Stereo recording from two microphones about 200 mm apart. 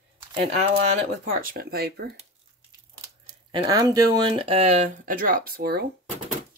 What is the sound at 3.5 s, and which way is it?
Speech, 20° right (ahead or behind).